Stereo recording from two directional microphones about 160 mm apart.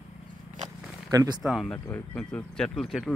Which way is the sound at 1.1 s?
25° right (ahead or behind).